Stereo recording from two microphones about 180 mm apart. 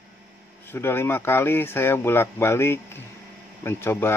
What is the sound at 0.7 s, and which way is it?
Speech, 15° left (ahead or behind).